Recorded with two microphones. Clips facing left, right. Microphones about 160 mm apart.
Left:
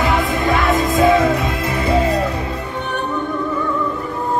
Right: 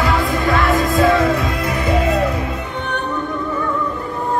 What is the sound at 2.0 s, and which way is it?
Music, 30° left (ahead or behind).